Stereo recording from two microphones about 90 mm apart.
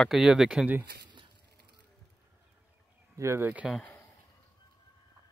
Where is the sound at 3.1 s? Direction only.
30° right (ahead or behind).